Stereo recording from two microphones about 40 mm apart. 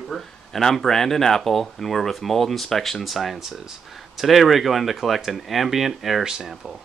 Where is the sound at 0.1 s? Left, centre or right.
Centre.